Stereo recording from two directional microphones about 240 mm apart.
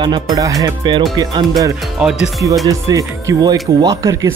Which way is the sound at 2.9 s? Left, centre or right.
Centre.